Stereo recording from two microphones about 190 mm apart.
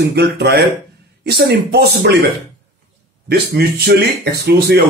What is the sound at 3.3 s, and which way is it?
Speech, 55° right (ahead or behind).